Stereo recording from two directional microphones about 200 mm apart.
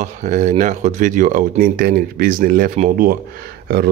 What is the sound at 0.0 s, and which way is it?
Speech, 35° right (ahead or behind).